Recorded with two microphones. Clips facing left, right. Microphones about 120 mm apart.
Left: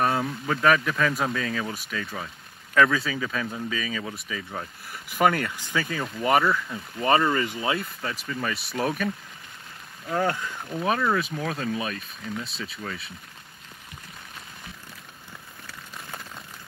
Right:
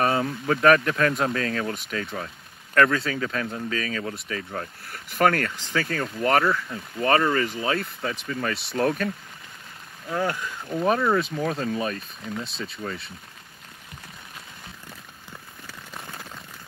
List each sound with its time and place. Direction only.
0.0 s speech: centre (ahead or behind)
7.3 s speech: 15° left (ahead or behind)
7.7 s speech: centre (ahead or behind)
10.8 s speech: centre (ahead or behind)